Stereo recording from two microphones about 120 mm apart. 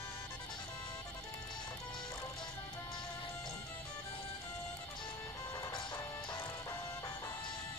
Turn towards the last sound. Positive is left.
turn(degrees=25)  # may be behind; listen again after turning